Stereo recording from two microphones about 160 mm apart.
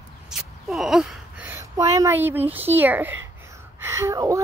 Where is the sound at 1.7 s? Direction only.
20° right (ahead or behind).